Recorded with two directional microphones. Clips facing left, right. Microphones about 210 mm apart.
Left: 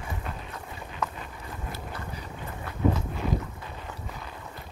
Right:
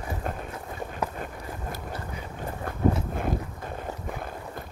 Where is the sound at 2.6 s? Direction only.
50° right (ahead or behind).